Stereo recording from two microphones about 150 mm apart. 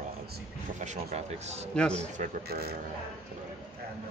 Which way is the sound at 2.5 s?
90° right.